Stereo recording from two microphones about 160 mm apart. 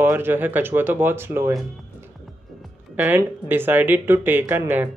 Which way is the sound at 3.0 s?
10° right (ahead or behind).